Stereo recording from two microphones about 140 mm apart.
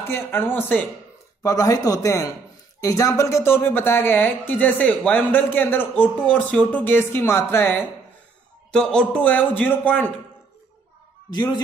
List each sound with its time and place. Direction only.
0.1 s speech: 15° left (ahead or behind)
1.4 s speech: 25° left (ahead or behind)
11.3 s speech: 30° left (ahead or behind)